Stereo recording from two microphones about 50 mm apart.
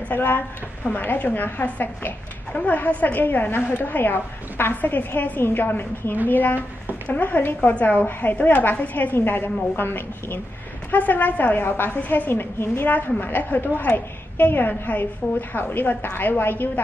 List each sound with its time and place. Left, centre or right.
0.1 s a woman's voice: left
9.1 s a woman's voice: left
10.9 s a woman's voice: left
11.6 s a woman's voice: left
12.0 s a woman's voice: left
12.3 s a woman's voice: left
12.9 s a woman's voice: left